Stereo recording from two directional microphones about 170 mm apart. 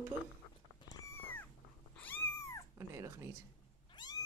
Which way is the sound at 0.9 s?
15° left (ahead or behind).